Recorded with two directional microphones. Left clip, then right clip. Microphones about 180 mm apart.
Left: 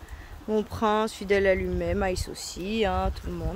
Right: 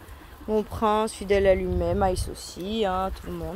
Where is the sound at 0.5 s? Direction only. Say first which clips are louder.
Right 2 dB; 10° left (ahead or behind).